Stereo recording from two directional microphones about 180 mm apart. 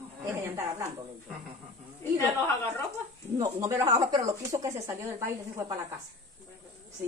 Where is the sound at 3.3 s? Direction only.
15° right (ahead or behind).